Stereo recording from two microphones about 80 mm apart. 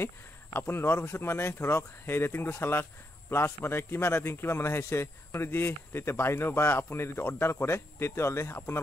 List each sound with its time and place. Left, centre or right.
0.0 s speech: left